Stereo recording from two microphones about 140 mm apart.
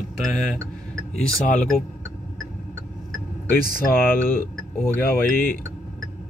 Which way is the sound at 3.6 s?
90° left.